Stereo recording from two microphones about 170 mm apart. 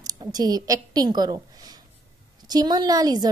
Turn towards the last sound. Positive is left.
turn(degrees=-25)  # may be behind; listen again after turning